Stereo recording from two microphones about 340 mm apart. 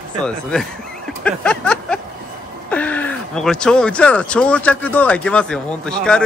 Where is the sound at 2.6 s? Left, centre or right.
Centre.